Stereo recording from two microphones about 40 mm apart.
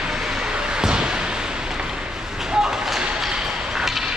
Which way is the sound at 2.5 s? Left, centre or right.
Centre.